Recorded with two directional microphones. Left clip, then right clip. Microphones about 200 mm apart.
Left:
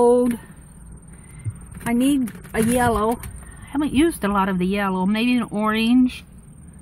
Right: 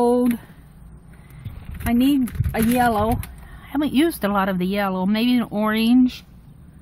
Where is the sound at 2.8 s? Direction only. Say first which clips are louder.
Right 1 dB; 25° right (ahead or behind).